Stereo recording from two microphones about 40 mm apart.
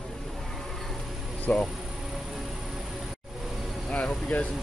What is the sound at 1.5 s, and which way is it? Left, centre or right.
Speech, left.